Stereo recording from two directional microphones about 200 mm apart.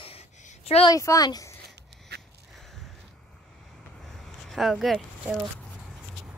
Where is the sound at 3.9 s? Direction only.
Centre (ahead or behind).